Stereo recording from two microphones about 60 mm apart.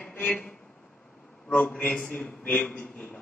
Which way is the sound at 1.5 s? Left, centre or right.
Left.